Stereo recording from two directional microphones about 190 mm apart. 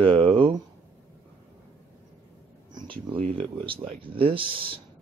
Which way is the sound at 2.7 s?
25° right (ahead or behind).